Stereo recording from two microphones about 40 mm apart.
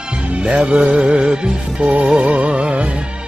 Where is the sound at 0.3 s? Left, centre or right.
Right.